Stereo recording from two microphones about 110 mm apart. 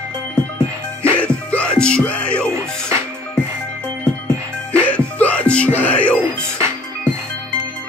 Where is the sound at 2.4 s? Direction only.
20° right (ahead or behind).